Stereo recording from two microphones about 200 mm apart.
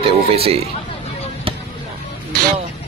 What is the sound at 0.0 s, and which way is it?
Speech, 30° right (ahead or behind).